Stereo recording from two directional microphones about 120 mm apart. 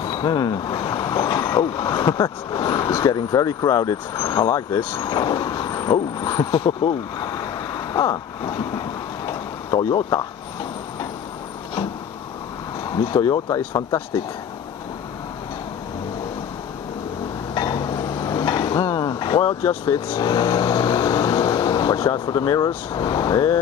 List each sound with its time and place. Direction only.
0.0 s speech: 35° left (ahead or behind)
12.9 s speech: 40° left (ahead or behind)
17.6 s a sound: 35° left (ahead or behind)
20.2 s speech: 40° left (ahead or behind)